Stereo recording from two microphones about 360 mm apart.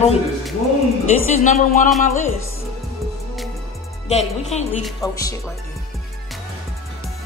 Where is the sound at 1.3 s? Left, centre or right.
Left.